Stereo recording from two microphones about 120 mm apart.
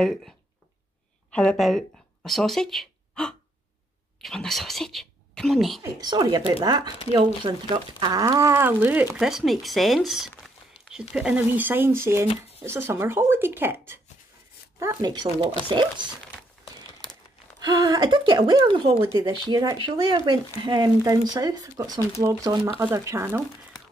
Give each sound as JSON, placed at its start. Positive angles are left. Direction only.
{"t": 0.0, "sound": "speech", "side_deg": 5}
{"t": 1.3, "sound": "speech", "side_deg": 5}
{"t": 5.8, "sound": "speech", "side_deg": -35}
{"t": 9.3, "sound": "speech", "side_deg": 0}
{"t": 14.8, "sound": "speech", "side_deg": -30}
{"t": 17.6, "sound": "speech", "side_deg": -30}
{"t": 23.7, "sound": "a sound", "side_deg": 30}